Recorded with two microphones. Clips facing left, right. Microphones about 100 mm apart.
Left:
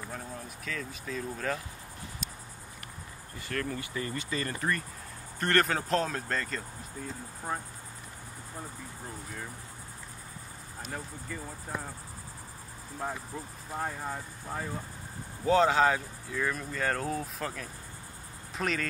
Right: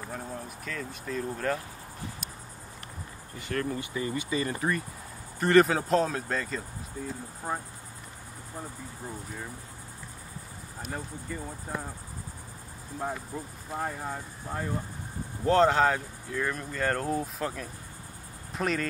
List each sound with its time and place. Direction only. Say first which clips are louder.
0.1 s speech: right 3 dB; centre (ahead or behind)
3.3 s speech: right 3 dB; 25° right (ahead or behind); by 6.6 s 5° right (ahead or behind)
7.5 s speech: right 2 dB; 15° right (ahead or behind)
13.0 s speech: right 2 dB; centre (ahead or behind)